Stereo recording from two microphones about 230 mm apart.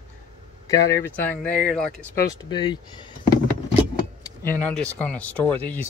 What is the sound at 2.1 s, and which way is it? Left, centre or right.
Speech, centre.